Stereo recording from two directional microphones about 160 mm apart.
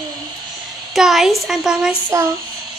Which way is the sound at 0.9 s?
Centre (ahead or behind).